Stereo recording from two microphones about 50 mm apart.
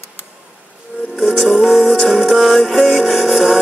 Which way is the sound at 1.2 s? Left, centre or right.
Centre.